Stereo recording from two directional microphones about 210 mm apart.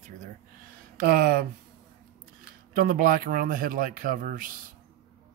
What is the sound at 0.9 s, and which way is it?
Speech, 45° right (ahead or behind).